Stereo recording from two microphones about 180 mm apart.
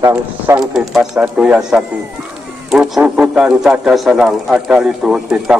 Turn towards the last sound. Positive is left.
turn(degrees=-5)  # may be behind; listen again after turning